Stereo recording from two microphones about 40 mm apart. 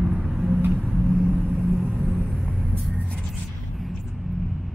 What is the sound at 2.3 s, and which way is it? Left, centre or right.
Vehicle, centre.